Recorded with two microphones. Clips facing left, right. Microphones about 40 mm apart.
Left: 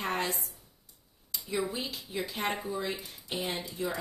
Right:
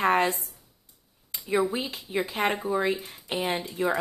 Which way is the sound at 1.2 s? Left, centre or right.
Right.